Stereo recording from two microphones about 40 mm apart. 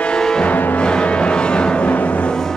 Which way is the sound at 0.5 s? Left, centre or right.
Left.